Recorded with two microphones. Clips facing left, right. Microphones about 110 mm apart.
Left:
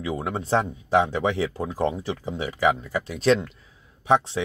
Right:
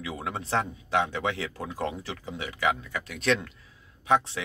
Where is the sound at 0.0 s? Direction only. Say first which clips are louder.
Left 6 dB; 25° left (ahead or behind).